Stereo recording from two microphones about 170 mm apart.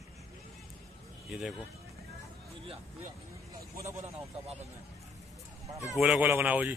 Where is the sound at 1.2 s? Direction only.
Centre (ahead or behind).